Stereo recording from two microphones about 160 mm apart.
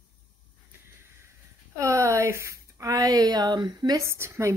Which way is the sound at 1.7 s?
20° right (ahead or behind).